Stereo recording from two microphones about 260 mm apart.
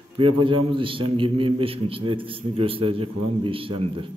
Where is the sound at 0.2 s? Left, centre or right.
Centre.